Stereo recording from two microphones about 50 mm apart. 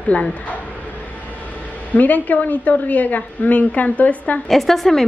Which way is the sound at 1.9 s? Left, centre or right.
Left.